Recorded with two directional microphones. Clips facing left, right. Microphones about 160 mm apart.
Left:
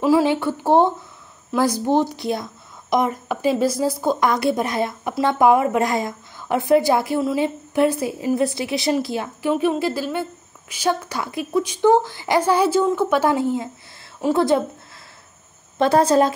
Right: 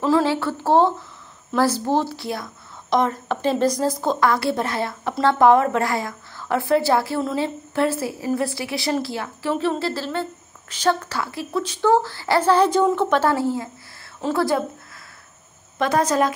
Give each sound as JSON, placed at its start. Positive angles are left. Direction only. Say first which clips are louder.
{"t": 0.0, "sound": "a woman's voice", "louder": "left 2 dB", "side_deg": 15}
{"t": 15.8, "sound": "a woman's voice", "louder": "left 4 dB", "side_deg": 30}